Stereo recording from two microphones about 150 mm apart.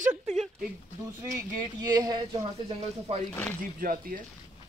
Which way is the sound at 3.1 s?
45° right (ahead or behind).